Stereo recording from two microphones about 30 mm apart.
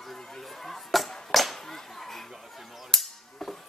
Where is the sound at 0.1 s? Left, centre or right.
Centre.